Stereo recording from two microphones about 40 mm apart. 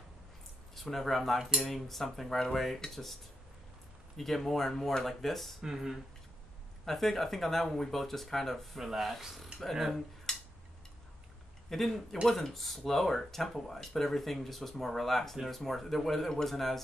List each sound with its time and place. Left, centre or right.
0.7 s speech: centre
4.2 s speech: centre
5.6 s speech: centre
6.9 s speech: centre
10.3 s a sound: centre
11.7 s speech: centre